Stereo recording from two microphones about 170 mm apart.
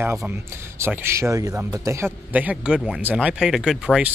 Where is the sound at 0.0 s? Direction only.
15° right (ahead or behind).